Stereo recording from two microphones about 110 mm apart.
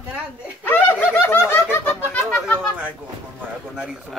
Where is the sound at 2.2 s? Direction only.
5° left (ahead or behind).